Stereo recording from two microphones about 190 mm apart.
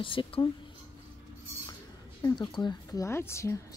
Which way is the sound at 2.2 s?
20° left (ahead or behind).